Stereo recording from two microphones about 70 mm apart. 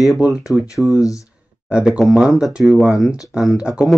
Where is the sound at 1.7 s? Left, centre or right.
Centre.